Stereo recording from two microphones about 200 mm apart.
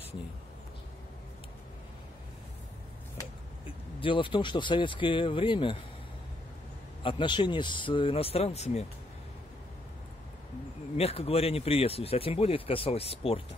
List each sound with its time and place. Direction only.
4.0 s speech: 25° left (ahead or behind)
7.0 s speech: 25° left (ahead or behind)
11.0 s speech: 30° left (ahead or behind)